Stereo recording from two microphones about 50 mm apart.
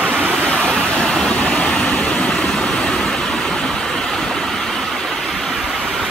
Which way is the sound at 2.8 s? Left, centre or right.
Centre.